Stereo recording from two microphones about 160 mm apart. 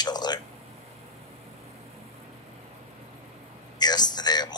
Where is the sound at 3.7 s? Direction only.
25° left (ahead or behind).